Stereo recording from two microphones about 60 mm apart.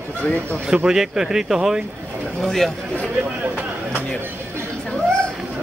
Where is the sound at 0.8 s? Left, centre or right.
Centre.